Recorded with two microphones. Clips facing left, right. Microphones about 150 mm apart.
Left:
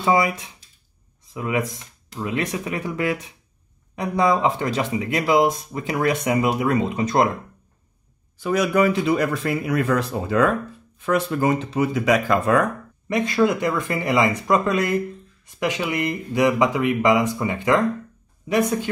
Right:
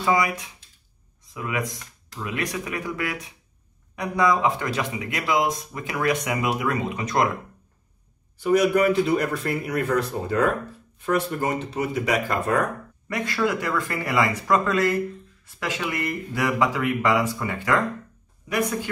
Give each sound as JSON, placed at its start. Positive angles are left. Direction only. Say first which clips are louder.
{"t": 0.0, "sound": "speech", "louder": "left 3 dB", "side_deg": 25}
{"t": 8.5, "sound": "speech", "louder": "even", "side_deg": 90}
{"t": 13.1, "sound": "speech", "louder": "left 5 dB", "side_deg": 20}